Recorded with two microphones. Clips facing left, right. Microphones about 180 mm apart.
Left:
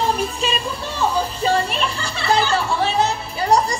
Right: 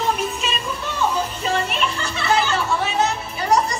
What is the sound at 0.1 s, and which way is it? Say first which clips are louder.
Music: left 2 dB; 35° left (ahead or behind).